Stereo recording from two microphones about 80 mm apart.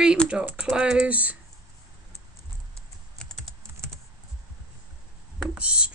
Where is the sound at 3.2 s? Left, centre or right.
Centre.